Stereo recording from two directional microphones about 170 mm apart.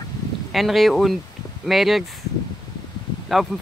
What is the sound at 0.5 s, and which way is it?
Speech, centre (ahead or behind).